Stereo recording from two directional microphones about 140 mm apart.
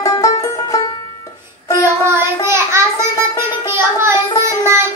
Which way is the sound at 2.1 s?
20° right (ahead or behind).